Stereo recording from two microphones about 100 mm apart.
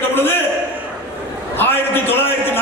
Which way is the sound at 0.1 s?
20° left (ahead or behind).